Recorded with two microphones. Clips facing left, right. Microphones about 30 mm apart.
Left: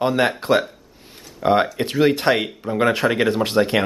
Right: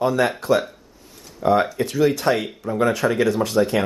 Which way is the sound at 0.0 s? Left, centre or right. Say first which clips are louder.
Left 1 dB; left.